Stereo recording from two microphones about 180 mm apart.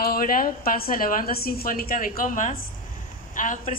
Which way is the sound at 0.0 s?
55° left (ahead or behind).